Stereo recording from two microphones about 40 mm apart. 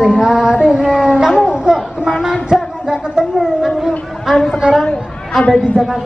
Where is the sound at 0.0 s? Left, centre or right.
Centre.